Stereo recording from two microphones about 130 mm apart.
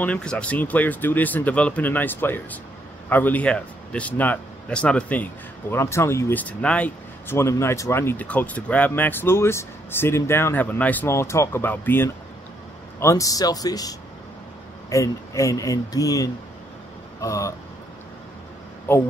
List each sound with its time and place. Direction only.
0.0 s speech: 10° left (ahead or behind)
13.0 s speech: 25° left (ahead or behind)
18.9 s speech: 15° left (ahead or behind)